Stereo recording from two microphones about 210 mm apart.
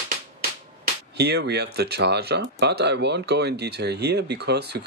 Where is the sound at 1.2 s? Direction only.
50° right (ahead or behind).